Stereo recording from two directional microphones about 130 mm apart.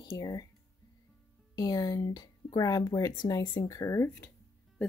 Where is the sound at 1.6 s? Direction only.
30° left (ahead or behind).